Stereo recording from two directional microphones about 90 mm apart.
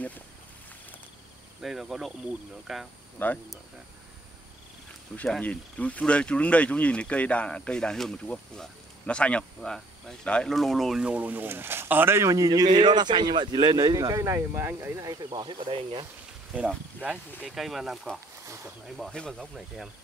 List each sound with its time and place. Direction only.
1.6 s speech: 5° right (ahead or behind)
3.2 s speech: 20° left (ahead or behind)
5.4 s speech: 15° left (ahead or behind); by 11.1 s centre (ahead or behind)
11.1 s speech: 15° right (ahead or behind)
12.3 s speech: 45° right (ahead or behind)
15.0 s speech: 45° right (ahead or behind)
15.4 s speech: 70° right (ahead or behind)
16.5 s speech: 15° right (ahead or behind)
17.5 s speech: centre (ahead or behind)